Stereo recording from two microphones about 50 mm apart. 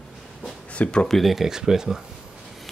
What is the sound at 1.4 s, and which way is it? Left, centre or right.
Speech, centre.